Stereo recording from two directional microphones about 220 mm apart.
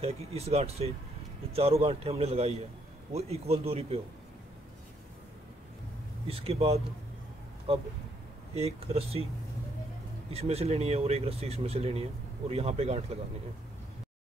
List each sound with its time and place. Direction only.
0.0 s speech: 25° right (ahead or behind)
6.2 s speech: 25° right (ahead or behind)
10.3 s speech: 30° right (ahead or behind)